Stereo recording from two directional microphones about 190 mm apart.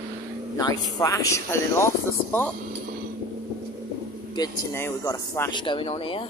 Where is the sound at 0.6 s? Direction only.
20° left (ahead or behind).